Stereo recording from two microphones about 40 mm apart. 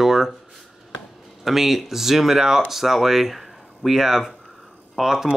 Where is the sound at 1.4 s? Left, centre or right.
Centre.